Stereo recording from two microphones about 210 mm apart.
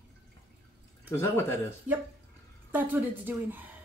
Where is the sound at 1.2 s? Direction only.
10° left (ahead or behind).